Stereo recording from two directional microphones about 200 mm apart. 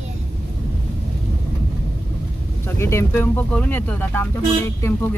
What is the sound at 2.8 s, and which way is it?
Speech, 15° left (ahead or behind).